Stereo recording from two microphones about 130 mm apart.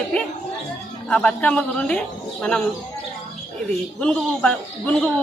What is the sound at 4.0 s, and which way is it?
Speech, 10° left (ahead or behind).